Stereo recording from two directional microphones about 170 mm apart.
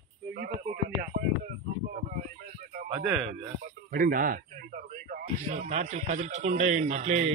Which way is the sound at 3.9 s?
55° right (ahead or behind).